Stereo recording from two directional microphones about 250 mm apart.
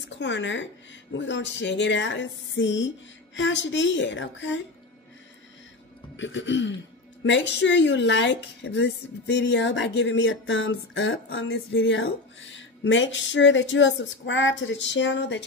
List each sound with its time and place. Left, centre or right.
0.2 s a woman's voice: left
6.1 s a woman's voice: left